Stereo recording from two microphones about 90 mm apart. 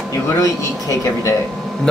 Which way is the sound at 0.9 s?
35° left (ahead or behind).